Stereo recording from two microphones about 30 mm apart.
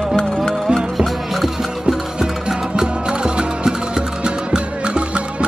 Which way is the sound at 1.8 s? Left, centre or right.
Right.